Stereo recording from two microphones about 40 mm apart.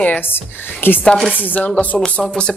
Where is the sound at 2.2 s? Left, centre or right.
Left.